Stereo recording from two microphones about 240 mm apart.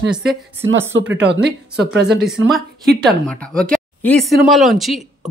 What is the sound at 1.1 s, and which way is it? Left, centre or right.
Speech, right.